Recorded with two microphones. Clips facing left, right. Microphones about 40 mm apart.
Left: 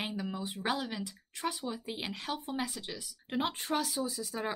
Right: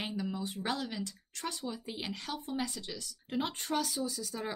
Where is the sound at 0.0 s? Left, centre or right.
Centre.